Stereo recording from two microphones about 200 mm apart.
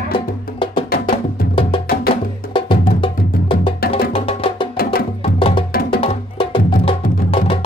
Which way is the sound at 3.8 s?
50° left (ahead or behind).